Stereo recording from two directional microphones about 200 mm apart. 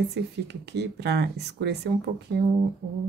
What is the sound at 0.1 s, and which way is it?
Speech, 60° right (ahead or behind).